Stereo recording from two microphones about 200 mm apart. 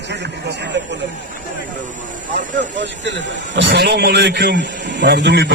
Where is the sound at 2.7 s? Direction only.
65° right (ahead or behind).